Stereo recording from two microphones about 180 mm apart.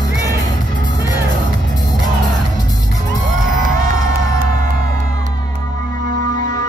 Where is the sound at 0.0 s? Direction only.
20° left (ahead or behind).